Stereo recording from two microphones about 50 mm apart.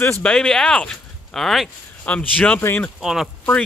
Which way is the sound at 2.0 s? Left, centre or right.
Left.